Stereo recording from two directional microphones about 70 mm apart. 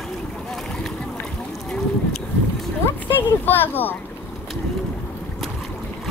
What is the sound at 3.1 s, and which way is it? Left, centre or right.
Speech, left.